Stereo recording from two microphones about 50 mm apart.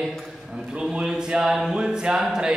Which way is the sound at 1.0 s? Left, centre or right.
Centre.